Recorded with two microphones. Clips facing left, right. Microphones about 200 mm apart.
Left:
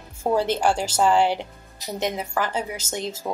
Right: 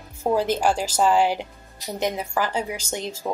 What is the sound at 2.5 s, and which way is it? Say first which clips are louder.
Speech: right 1 dB; 5° left (ahead or behind).